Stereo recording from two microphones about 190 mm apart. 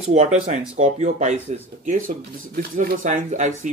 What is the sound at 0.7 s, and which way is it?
Speech, 40° right (ahead or behind).